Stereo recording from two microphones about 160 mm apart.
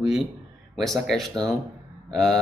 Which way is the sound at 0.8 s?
Centre (ahead or behind).